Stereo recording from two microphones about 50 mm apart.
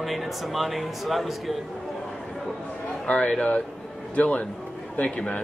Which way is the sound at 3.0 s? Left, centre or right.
Left.